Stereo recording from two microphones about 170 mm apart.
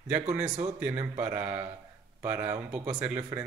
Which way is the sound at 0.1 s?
10° right (ahead or behind).